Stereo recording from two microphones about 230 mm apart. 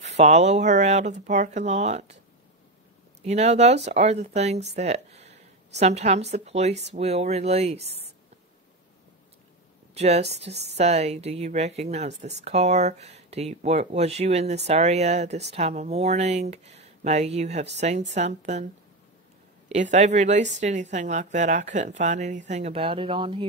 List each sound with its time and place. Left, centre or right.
0.0 s speech: right
3.2 s speech: right
9.9 s speech: right
19.9 s speech: right